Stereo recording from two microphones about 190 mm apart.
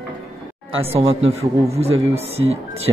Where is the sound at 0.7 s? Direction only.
30° right (ahead or behind).